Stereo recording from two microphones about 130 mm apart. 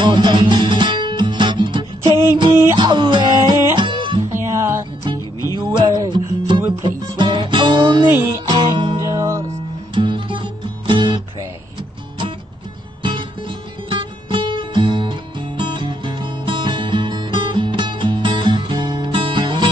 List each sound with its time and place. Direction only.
0.0 s music: 35° right (ahead or behind)
4.3 s music: 20° right (ahead or behind)
5.6 s music: 35° right (ahead or behind)
9.9 s music: 40° right (ahead or behind)
13.0 s music: 40° right (ahead or behind)